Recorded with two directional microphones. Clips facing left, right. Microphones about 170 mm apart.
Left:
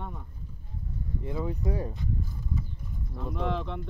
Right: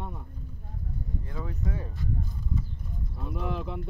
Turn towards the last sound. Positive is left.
turn(degrees=-5)  # may be behind; listen again after turning